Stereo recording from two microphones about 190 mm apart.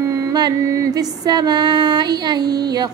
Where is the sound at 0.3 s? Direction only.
20° right (ahead or behind).